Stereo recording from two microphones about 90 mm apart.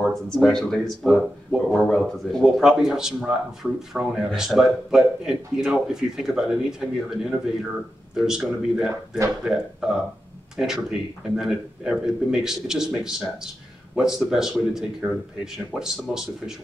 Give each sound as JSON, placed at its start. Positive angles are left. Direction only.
{"t": 0.0, "sound": "speech", "side_deg": 0}